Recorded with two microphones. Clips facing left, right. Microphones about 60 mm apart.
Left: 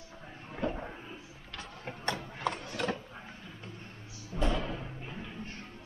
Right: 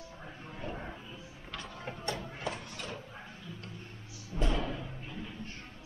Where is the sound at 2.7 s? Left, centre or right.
Left.